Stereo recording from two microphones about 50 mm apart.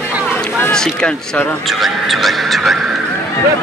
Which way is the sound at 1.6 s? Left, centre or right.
Centre.